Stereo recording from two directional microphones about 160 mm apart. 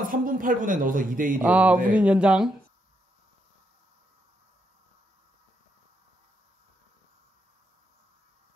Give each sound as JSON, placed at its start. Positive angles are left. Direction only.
{"t": 0.1, "sound": "speech", "side_deg": -55}
{"t": 1.4, "sound": "speech", "side_deg": -10}